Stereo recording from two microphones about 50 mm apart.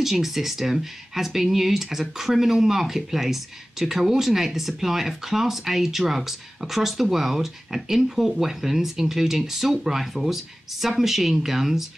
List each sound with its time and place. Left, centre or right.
0.0 s speech: centre